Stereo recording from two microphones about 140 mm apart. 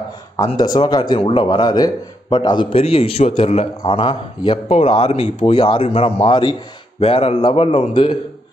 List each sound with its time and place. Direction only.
0.6 s speech: 30° left (ahead or behind)
2.8 s a man's voice: 45° left (ahead or behind)